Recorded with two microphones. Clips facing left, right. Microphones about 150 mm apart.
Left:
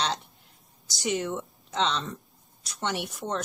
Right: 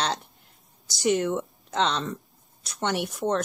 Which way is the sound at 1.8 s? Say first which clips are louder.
Right 2 dB; 45° right (ahead or behind).